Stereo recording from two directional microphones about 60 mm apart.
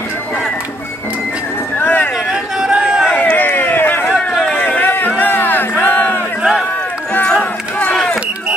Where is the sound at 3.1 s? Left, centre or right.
Left.